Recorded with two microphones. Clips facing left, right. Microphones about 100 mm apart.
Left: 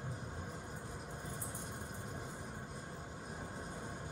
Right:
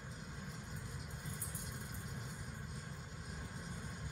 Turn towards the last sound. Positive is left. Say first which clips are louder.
# left 4 dB
turn(degrees=50)  # may be behind; listen again after turning